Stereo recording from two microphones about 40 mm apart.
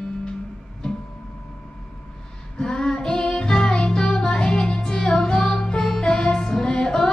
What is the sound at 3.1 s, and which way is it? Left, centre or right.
Music, left.